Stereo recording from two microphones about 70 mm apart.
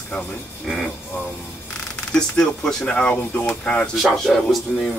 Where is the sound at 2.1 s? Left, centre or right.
Centre.